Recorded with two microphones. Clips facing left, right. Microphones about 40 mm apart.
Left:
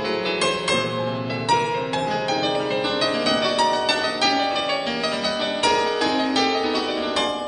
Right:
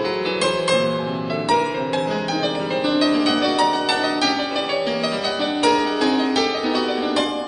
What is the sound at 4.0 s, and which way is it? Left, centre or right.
Music, centre.